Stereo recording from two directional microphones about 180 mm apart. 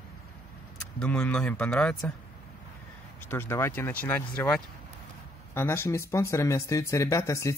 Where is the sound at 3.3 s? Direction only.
15° left (ahead or behind).